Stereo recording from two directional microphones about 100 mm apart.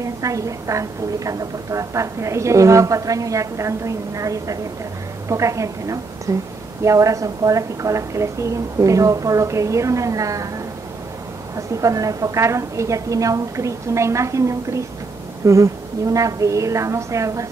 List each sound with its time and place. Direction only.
0.0 s a woman's voice: 35° right (ahead or behind)
11.5 s a woman's voice: 35° right (ahead or behind)